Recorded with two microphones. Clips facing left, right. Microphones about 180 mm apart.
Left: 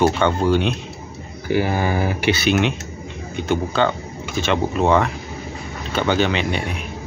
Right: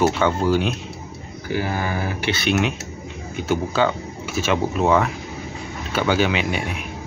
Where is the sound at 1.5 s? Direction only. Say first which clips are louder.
Left 5 dB; 20° left (ahead or behind).